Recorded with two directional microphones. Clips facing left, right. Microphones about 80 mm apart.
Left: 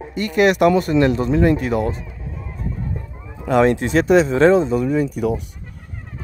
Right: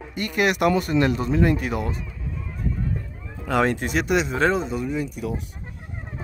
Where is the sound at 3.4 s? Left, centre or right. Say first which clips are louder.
Left 6 dB; left.